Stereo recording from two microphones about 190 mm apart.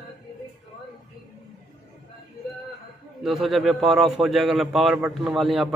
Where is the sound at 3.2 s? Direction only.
Centre (ahead or behind).